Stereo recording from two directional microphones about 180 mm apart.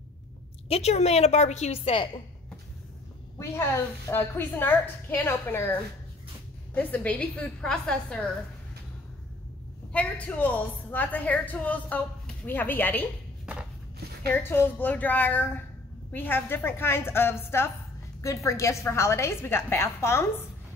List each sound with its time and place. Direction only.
0.7 s a woman's voice: 35° left (ahead or behind)
3.3 s a woman's voice: 15° left (ahead or behind)
9.9 s a woman's voice: 5° left (ahead or behind)
13.5 s a sound: 5° right (ahead or behind)
14.3 s a woman's voice: 10° left (ahead or behind)